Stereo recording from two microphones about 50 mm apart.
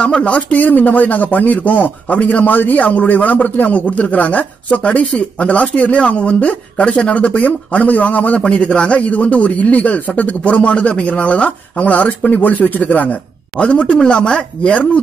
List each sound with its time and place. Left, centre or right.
0.0 s speech: left
13.6 s speech: left